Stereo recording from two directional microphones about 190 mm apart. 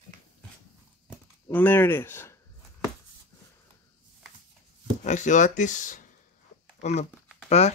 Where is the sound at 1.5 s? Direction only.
10° left (ahead or behind).